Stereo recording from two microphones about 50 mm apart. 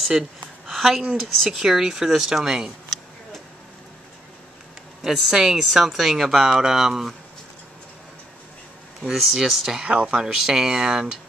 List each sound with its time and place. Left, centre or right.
0.7 s a sound: centre
1.5 s speech: centre
5.0 s speech: centre
9.0 s speech: centre
9.8 s speech: right